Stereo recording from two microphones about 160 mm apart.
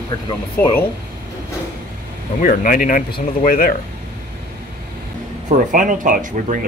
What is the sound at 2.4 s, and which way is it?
Speech, 55° left (ahead or behind).